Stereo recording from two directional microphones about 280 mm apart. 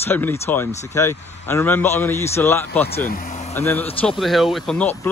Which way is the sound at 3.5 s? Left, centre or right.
Centre.